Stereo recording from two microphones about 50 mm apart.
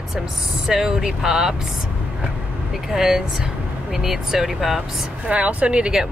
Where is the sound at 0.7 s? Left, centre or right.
Centre.